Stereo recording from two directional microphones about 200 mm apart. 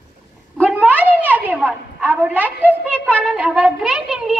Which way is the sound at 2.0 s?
10° right (ahead or behind).